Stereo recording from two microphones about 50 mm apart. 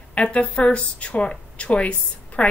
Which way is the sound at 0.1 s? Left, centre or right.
Left.